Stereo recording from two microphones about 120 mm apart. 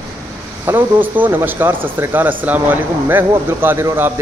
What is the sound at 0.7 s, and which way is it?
Speech, 15° right (ahead or behind).